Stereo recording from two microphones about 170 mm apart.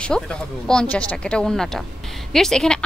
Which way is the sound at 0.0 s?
5° left (ahead or behind).